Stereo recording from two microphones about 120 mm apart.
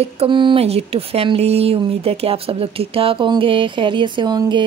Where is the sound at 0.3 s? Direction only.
40° right (ahead or behind).